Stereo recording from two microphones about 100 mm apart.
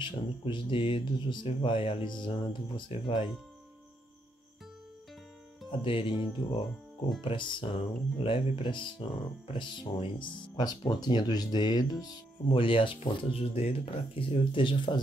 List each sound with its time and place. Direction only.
0.0 s speech: 55° left (ahead or behind)
5.7 s speech: 65° left (ahead or behind)
10.4 s speech: 50° left (ahead or behind)
12.4 s speech: 60° left (ahead or behind)
13.6 s speech: 70° left (ahead or behind); by 15.0 s 55° left (ahead or behind)